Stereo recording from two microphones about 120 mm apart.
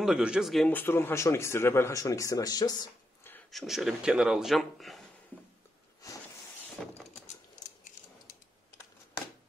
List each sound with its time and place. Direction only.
0.0 s a man's voice: 5° right (ahead or behind)
0.7 s speech: 15° left (ahead or behind); by 2.9 s 35° left (ahead or behind)
3.5 s a man's voice: centre (ahead or behind)
6.0 s a sound: 30° left (ahead or behind)
6.8 s vehicle: 5° left (ahead or behind)